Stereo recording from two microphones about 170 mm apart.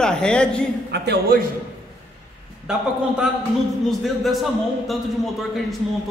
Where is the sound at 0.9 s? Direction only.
75° right (ahead or behind).